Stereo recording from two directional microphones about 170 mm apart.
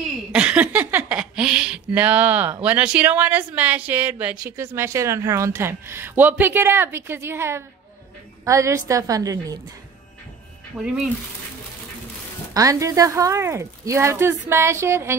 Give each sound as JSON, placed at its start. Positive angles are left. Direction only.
{"t": 0.3, "sound": "a woman's voice", "side_deg": -5}
{"t": 10.8, "sound": "speech", "side_deg": -5}
{"t": 12.5, "sound": "speech", "side_deg": -20}